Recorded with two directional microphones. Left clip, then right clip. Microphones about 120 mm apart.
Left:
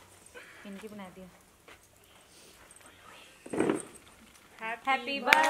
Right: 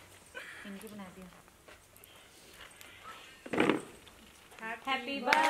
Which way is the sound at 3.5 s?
40° right (ahead or behind).